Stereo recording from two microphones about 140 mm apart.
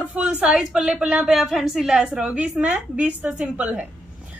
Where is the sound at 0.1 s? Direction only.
10° right (ahead or behind).